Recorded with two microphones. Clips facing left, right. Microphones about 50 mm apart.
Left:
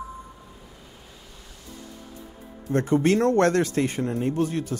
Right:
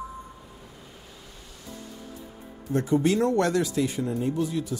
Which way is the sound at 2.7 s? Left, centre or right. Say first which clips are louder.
Left 2 dB; left.